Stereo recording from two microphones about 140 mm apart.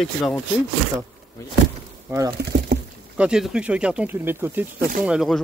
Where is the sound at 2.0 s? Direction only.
20° right (ahead or behind).